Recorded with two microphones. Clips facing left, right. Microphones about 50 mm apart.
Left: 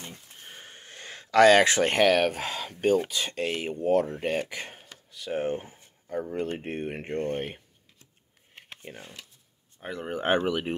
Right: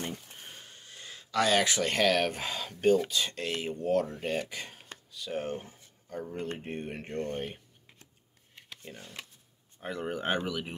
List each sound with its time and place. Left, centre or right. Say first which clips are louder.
0.6 s a sound: left 4 dB; left
1.7 s speech: left 5 dB; left
2.1 s speech: left 4 dB; centre
6.6 s speech: left 5 dB; left
8.8 s speech: left 3 dB; left
9.8 s speech: even; centre
10.2 s speech: left 9 dB; left